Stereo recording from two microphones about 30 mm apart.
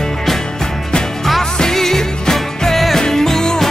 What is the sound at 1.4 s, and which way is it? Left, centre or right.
Music, centre.